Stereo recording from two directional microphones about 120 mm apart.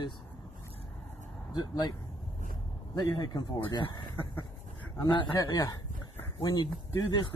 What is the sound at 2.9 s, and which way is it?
Speech, 35° left (ahead or behind).